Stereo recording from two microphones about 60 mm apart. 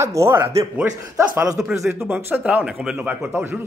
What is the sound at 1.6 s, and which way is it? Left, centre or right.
Speech, centre.